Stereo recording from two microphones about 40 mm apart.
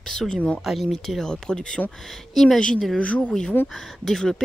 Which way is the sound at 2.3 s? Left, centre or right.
Centre.